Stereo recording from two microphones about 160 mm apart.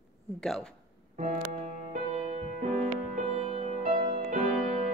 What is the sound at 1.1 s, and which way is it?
Music, 50° right (ahead or behind).